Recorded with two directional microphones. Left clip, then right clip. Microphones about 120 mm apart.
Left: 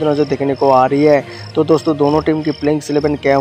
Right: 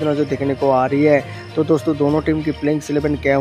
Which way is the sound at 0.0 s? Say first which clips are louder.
Left 4 dB; 10° right (ahead or behind).